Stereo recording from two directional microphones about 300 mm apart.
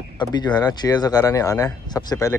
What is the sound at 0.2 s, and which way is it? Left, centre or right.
Speech, centre.